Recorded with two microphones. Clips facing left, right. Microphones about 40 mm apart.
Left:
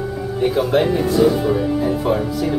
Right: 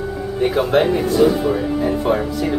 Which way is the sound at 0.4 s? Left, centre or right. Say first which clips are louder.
Right 1 dB; centre.